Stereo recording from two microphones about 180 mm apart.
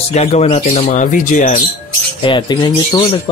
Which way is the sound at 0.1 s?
35° left (ahead or behind).